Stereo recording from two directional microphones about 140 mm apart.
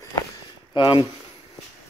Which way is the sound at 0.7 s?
35° left (ahead or behind).